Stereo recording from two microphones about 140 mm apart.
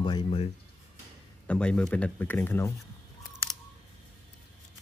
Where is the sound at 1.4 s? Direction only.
5° left (ahead or behind).